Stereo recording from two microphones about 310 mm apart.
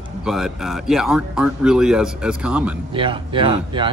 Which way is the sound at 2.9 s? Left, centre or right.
Centre.